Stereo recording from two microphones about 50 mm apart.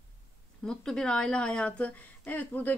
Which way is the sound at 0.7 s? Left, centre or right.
Centre.